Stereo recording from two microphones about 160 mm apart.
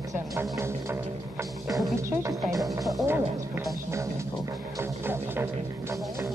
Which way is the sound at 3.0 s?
15° right (ahead or behind).